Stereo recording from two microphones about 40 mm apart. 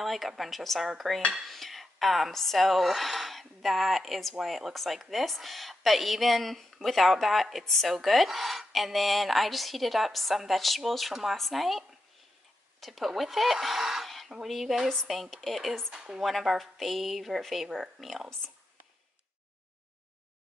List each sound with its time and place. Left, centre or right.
0.0 s speech: centre
7.6 s speech: centre
12.8 s speech: centre
15.9 s a woman's voice: centre
16.2 s speech: centre